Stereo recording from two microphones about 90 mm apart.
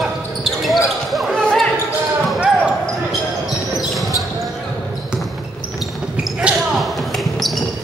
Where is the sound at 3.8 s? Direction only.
Centre (ahead or behind).